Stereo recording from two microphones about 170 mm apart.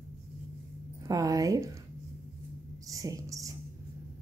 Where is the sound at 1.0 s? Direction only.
20° right (ahead or behind).